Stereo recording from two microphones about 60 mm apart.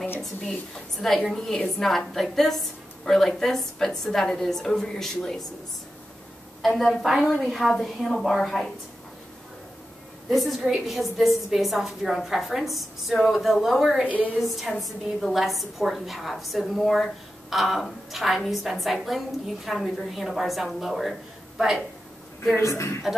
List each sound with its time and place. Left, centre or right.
0.2 s a woman's voice: centre
6.6 s a woman's voice: centre
10.3 s a woman's voice: centre
22.6 s a woman's voice: left